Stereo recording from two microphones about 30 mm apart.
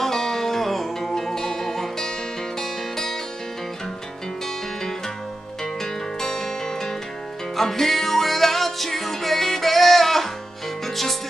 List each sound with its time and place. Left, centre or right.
0.0 s music: centre
5.6 s music: centre